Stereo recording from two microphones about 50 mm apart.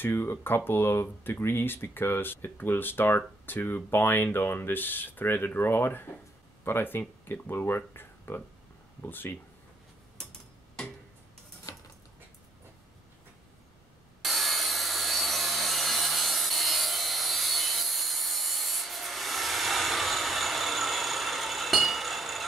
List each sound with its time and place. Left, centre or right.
0.0 s speech: left
14.2 s wood: centre